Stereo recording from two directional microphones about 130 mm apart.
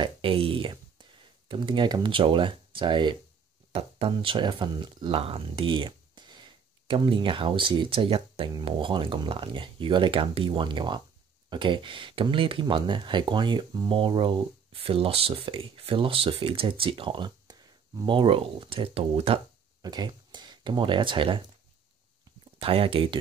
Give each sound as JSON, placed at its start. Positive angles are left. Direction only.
{"t": 0.0, "sound": "a sound", "side_deg": -45}
{"t": 1.5, "sound": "speech", "side_deg": -40}
{"t": 19.8, "sound": "speech", "side_deg": -30}
{"t": 22.6, "sound": "speech", "side_deg": -45}